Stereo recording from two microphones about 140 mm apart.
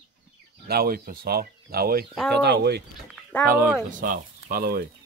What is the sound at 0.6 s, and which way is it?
Speech, 90° right.